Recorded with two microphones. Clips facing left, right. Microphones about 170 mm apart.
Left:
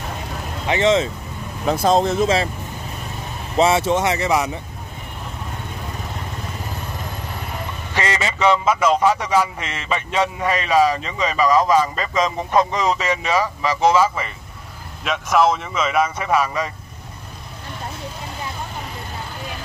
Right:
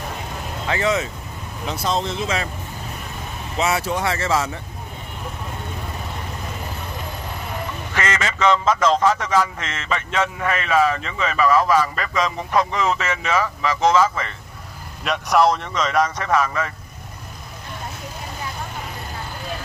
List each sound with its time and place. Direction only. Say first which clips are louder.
0.7 s speech: left 5 dB; 25° left (ahead or behind)
1.7 s speech: left 7 dB; 45° left (ahead or behind)
2.2 s speech: left 6 dB; 30° left (ahead or behind)
3.5 s speech: left 6 dB; 25° left (ahead or behind)
7.9 s a man's voice: left 2 dB; 20° left (ahead or behind)
15.0 s a man's voice: even; centre (ahead or behind)